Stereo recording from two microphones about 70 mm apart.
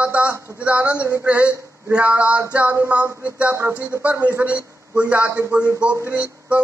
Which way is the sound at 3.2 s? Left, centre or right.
Right.